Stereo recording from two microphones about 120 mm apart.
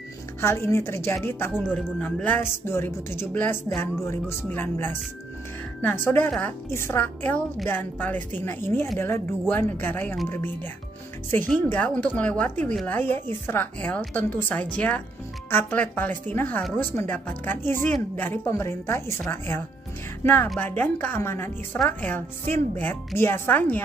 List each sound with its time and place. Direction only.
0.4 s a woman's voice: 20° left (ahead or behind)